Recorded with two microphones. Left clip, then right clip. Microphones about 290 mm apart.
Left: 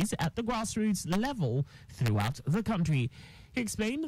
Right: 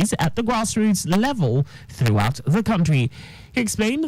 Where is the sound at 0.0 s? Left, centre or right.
Centre.